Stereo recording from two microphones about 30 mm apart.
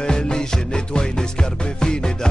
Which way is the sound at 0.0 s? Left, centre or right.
Left.